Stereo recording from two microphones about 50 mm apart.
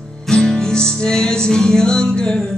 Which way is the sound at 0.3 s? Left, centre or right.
Centre.